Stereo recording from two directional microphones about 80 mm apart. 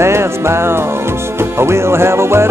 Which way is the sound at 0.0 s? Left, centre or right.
Right.